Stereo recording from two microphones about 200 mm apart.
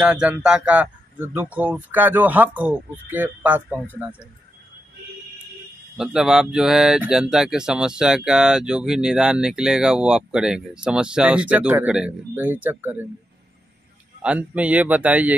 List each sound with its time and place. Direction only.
0.0 s speech: 5° right (ahead or behind)
5.9 s speech: 5° right (ahead or behind)
14.2 s speech: 5° right (ahead or behind)